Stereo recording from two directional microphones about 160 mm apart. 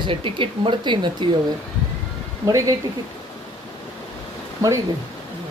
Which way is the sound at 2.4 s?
20° right (ahead or behind).